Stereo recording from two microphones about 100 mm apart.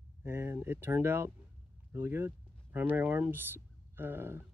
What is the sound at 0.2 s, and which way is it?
Speech, 25° right (ahead or behind).